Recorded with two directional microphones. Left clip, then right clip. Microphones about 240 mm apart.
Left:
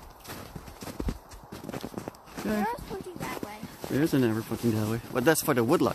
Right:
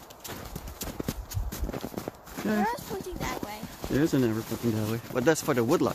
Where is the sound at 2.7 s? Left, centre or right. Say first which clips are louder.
Right 2 dB; right.